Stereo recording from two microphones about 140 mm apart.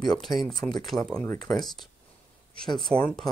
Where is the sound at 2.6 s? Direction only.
Centre (ahead or behind).